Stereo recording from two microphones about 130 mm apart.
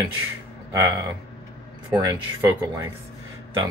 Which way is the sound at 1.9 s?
25° right (ahead or behind).